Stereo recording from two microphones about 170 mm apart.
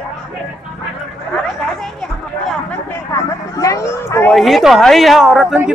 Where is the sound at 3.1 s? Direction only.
20° left (ahead or behind).